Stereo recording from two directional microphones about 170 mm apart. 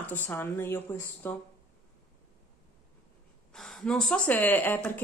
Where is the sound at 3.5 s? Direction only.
Centre (ahead or behind).